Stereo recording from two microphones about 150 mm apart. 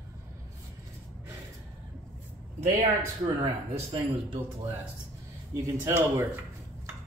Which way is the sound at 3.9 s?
35° right (ahead or behind).